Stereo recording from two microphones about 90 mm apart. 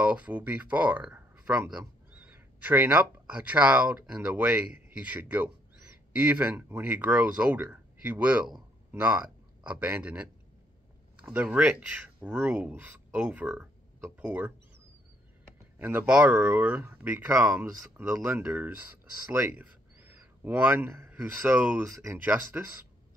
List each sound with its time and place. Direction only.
0.0 s speech: 15° right (ahead or behind)
2.1 s speech: 20° right (ahead or behind)
11.3 s speech: 15° right (ahead or behind)
15.8 s speech: 25° right (ahead or behind)